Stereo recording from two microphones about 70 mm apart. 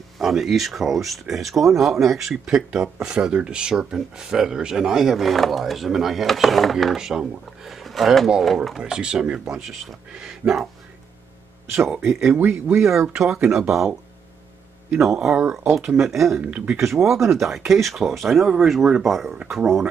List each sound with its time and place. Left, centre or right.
0.2 s speech: centre
12.1 s speech: centre
12.4 s speech: right
13.1 s speech: centre
15.0 s speech: centre
15.6 s speech: right
15.9 s speech: centre
16.4 s speech: right
17.3 s speech: centre